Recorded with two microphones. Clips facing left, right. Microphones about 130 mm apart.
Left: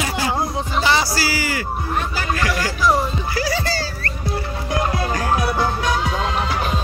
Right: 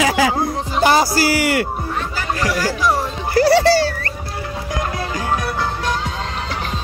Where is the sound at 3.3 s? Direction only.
65° right (ahead or behind).